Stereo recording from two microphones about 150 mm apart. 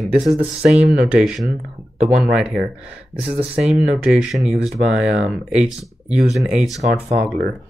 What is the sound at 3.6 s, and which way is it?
Speech, 5° right (ahead or behind).